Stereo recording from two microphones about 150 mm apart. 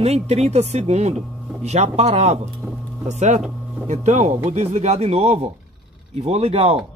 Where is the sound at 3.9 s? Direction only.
55° right (ahead or behind).